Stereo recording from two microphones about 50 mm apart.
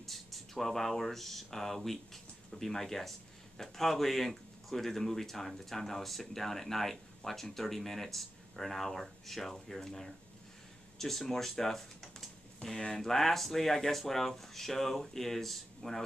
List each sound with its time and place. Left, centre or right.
0.0 s speech: centre
12.6 s speech: left
12.9 s speech: centre